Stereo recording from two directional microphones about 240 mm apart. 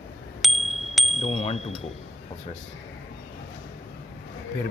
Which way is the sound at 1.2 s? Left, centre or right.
Left.